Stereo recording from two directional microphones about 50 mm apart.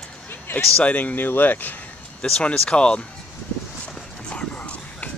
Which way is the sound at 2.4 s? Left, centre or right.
Left.